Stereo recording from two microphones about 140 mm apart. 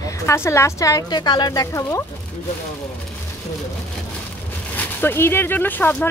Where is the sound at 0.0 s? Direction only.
20° left (ahead or behind).